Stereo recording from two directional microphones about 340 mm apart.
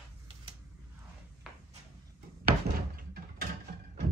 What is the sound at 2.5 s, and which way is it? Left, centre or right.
Door, right.